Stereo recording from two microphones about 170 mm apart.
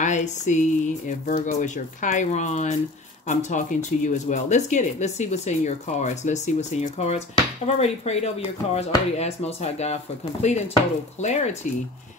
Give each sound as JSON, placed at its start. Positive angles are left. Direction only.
{"t": 0.0, "sound": "speech", "side_deg": 45}